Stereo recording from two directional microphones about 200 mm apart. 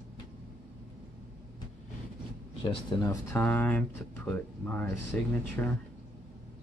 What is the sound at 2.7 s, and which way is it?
Speech, 25° left (ahead or behind).